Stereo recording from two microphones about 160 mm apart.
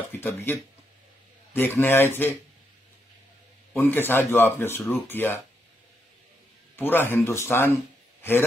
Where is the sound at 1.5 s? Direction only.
10° left (ahead or behind).